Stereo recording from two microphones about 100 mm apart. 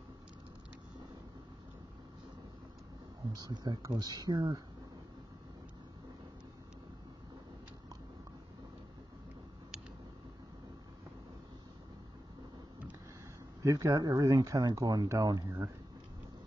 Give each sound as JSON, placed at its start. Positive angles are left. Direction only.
{"t": 3.3, "sound": "speech", "side_deg": -45}
{"t": 13.6, "sound": "speech", "side_deg": -35}